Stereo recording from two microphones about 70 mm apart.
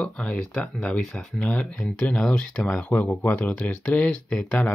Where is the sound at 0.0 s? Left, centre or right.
Centre.